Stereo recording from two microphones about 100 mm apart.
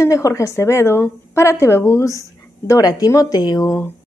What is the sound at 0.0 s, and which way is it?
A woman's voice, 35° left (ahead or behind).